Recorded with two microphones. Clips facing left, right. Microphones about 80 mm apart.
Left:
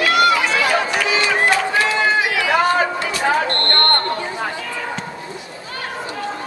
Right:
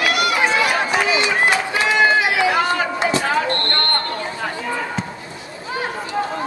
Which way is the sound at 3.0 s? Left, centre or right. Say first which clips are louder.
Right 4 dB; right.